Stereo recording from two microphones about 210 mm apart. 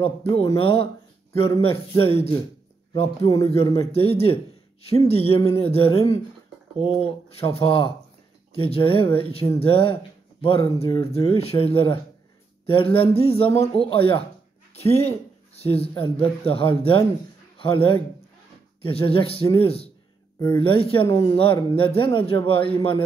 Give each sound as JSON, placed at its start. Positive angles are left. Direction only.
{"t": 1.3, "sound": "speech", "side_deg": 25}